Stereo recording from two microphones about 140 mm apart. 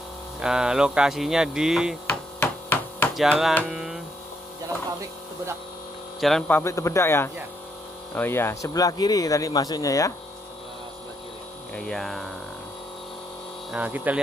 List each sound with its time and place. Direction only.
0.4 s speech: 5° right (ahead or behind)
2.4 s a sound: 10° left (ahead or behind)
3.2 s speech: centre (ahead or behind)
3.7 s a sound: centre (ahead or behind)
6.2 s speech: 5° left (ahead or behind); by 10.1 s 25° left (ahead or behind)
11.7 s speech: 5° left (ahead or behind)
13.7 s speech: 10° right (ahead or behind)